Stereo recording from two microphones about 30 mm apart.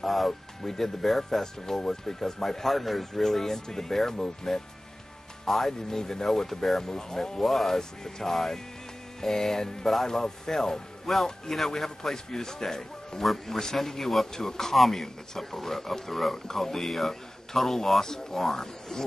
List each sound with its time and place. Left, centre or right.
0.0 s a man's voice: centre
0.3 s a man's voice: centre
1.4 s speech: centre
5.7 s speech: centre
6.8 s speech: centre
7.4 s a man's voice: centre
11.1 s a man's voice: centre; by 13.2 s left
13.2 s a man's voice: centre